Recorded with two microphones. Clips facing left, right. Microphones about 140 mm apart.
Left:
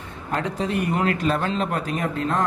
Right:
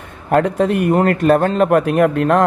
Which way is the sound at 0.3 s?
55° right (ahead or behind).